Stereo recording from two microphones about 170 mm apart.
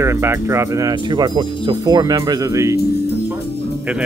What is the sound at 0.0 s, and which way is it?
Speech, 15° right (ahead or behind).